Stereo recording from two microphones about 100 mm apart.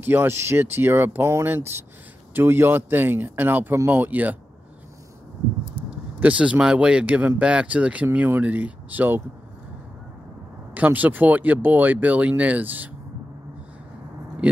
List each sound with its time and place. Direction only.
0.0 s speech: 20° right (ahead or behind)
5.9 s speech: 15° right (ahead or behind)
10.7 s speech: 15° right (ahead or behind)
14.4 s speech: 15° right (ahead or behind)